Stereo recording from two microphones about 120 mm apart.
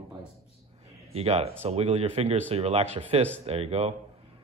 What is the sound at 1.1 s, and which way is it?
Speech, 60° right (ahead or behind).